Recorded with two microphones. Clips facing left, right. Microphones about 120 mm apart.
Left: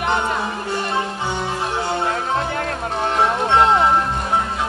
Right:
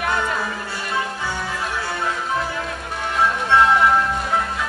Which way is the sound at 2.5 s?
55° left (ahead or behind).